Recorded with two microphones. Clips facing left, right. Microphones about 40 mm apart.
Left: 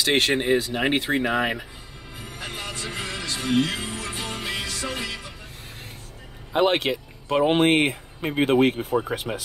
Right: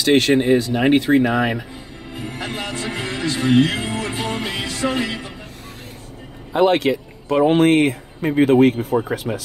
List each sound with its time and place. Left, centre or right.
0.0 s speech: centre
2.3 s speech: right
6.5 s a man's voice: centre
9.3 s speech: centre